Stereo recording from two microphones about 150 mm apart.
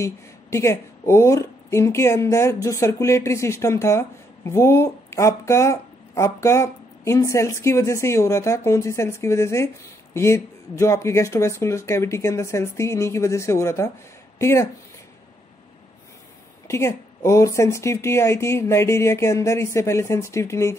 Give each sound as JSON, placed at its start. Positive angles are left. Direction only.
{"t": 0.0, "sound": "a woman's voice", "side_deg": 20}
{"t": 16.6, "sound": "a woman's voice", "side_deg": 20}